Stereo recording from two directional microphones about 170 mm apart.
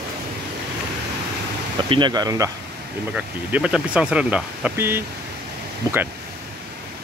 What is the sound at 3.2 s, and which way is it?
Speech, 5° right (ahead or behind).